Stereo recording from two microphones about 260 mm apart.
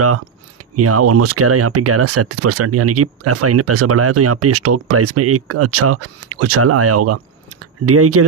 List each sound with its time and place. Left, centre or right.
0.7 s speech: right